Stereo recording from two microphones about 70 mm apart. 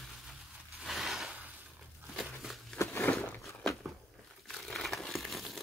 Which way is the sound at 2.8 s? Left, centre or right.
Left.